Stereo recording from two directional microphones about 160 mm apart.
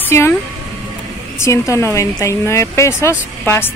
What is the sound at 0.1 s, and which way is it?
Speech, 15° left (ahead or behind).